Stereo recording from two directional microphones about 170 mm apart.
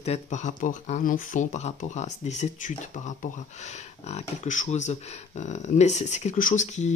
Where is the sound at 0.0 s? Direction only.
40° left (ahead or behind).